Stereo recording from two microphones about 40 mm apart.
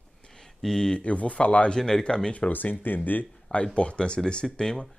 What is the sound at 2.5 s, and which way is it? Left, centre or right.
Speech, left.